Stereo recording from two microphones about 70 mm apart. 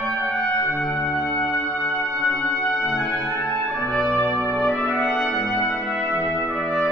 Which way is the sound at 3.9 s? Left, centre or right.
Centre.